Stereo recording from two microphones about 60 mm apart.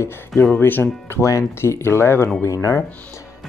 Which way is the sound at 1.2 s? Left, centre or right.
Left.